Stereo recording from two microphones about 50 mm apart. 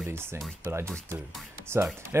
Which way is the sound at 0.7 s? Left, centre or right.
Right.